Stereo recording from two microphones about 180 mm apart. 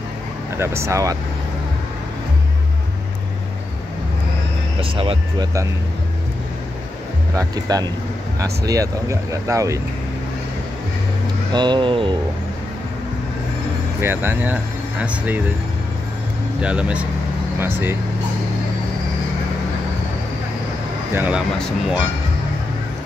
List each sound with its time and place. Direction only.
0.6 s speech: 15° right (ahead or behind)
4.7 s speech: 30° right (ahead or behind)
7.3 s speech: 20° right (ahead or behind)
11.5 s speech: 25° right (ahead or behind)
14.0 s speech: 10° right (ahead or behind)
16.6 s speech: 5° right (ahead or behind)
21.1 s speech: 10° right (ahead or behind)